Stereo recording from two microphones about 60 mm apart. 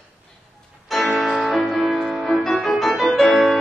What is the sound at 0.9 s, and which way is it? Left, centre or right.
Music, centre.